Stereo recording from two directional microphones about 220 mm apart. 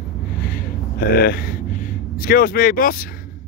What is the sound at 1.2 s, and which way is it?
Speech, 45° left (ahead or behind).